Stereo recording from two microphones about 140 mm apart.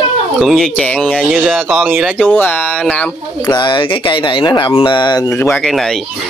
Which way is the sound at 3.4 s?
30° left (ahead or behind).